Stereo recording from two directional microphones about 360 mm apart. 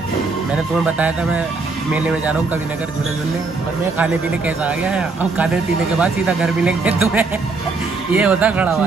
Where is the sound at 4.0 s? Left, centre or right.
Centre.